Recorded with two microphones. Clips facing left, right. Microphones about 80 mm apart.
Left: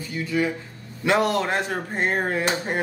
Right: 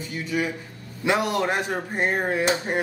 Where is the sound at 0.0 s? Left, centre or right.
Right.